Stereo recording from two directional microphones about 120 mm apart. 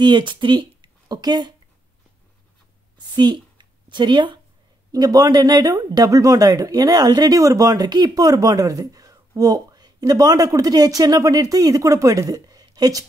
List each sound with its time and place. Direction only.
0.0 s speech: 40° right (ahead or behind)
3.2 s a woman's voice: 40° right (ahead or behind)